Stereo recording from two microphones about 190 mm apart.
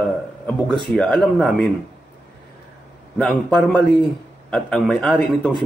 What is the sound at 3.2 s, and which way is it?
A man's voice, 5° left (ahead or behind).